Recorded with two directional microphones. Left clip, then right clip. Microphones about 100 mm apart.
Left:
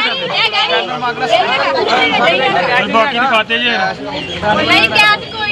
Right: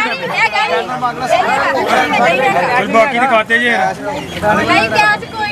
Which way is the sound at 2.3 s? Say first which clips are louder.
Even; 5° left (ahead or behind).